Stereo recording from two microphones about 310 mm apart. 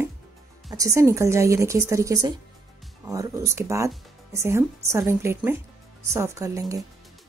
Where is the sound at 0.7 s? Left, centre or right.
Centre.